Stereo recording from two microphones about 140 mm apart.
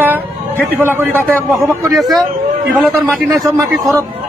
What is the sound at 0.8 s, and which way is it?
Speech, 15° right (ahead or behind).